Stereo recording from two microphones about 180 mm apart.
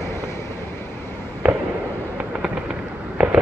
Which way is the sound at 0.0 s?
15° left (ahead or behind).